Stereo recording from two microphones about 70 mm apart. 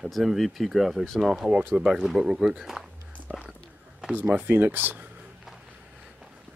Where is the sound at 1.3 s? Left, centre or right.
Centre.